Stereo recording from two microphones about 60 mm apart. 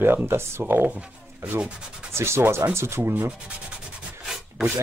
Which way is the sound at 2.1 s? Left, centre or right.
Right.